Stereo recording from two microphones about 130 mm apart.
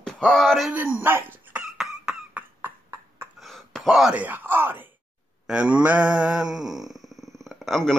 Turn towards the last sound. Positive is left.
turn(degrees=0)  # may be behind; listen again after turning